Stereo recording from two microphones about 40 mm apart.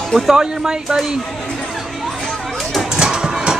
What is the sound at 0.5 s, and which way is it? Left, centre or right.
Speech, centre.